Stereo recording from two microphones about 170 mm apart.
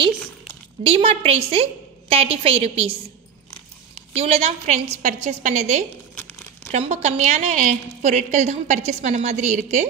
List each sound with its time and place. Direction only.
0.8 s a woman's voice: 35° right (ahead or behind)
4.2 s a woman's voice: 35° right (ahead or behind)